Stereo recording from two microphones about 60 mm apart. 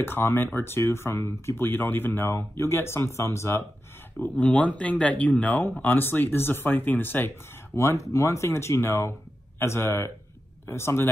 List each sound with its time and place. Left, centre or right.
0.0 s speech: left
1.7 s speech: left
4.2 s speech: left
7.7 s speech: left